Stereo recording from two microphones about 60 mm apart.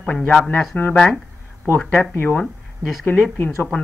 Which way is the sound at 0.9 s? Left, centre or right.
Centre.